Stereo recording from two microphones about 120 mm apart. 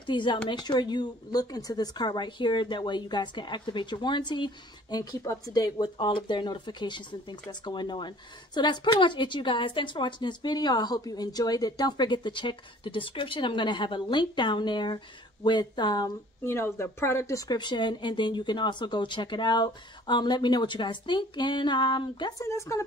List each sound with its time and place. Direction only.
0.0 s a woman's voice: 40° left (ahead or behind)
16.4 s a woman's voice: 20° left (ahead or behind); by 22.3 s 40° left (ahead or behind)
22.4 s speech: 25° left (ahead or behind)